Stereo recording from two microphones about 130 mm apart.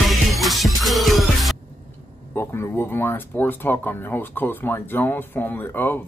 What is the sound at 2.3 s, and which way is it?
Speech, 20° left (ahead or behind).